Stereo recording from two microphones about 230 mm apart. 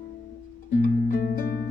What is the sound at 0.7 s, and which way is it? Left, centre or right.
Music, left.